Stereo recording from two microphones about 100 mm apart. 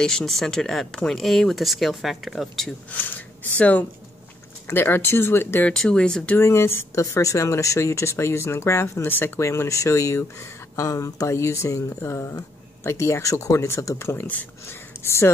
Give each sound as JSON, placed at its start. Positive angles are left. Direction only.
{"t": 0.0, "sound": "speech", "side_deg": 5}
{"t": 2.9, "sound": "speech", "side_deg": 20}
{"t": 5.7, "sound": "speech", "side_deg": 10}
{"t": 6.3, "sound": "speech", "side_deg": 25}